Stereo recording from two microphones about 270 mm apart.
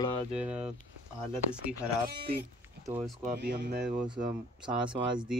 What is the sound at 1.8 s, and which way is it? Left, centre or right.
Speech, centre.